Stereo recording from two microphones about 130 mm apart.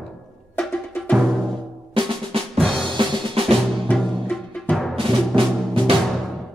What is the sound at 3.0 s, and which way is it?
Drum, 45° right (ahead or behind).